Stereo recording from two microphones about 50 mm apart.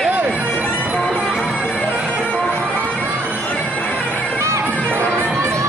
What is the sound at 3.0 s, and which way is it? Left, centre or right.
Music, right.